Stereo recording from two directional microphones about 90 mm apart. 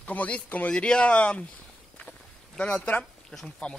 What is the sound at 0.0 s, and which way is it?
Speech, 15° left (ahead or behind).